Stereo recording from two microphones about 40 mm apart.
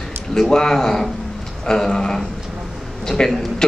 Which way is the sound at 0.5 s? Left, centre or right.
Centre.